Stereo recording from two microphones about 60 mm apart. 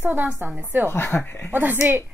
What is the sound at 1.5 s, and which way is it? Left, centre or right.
Speech, right.